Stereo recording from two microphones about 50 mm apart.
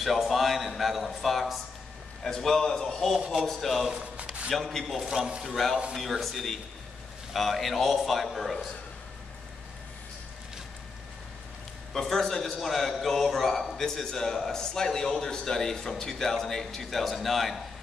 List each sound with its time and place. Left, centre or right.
0.0 s a man's voice: centre
4.0 s a sound: right
4.5 s a man's voice: centre
5.0 s a man's voice: centre
5.5 s a man's voice: centre
11.9 s a man's voice: centre